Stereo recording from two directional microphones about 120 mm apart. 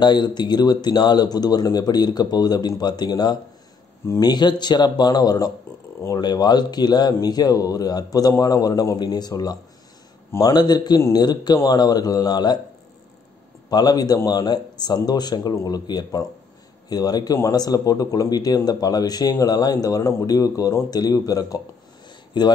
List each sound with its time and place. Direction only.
0.0 s speech: 40° left (ahead or behind)
13.7 s speech: 35° left (ahead or behind)